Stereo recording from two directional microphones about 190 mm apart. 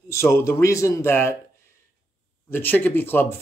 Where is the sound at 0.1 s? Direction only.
15° left (ahead or behind).